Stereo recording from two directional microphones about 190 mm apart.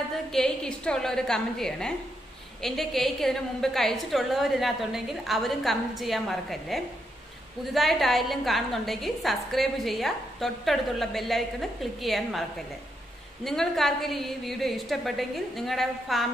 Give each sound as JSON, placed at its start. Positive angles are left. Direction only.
{"t": 0.3, "sound": "a woman's voice", "side_deg": 5}